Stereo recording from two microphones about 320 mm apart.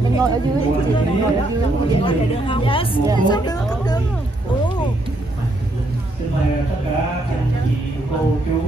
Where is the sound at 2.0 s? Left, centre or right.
Centre.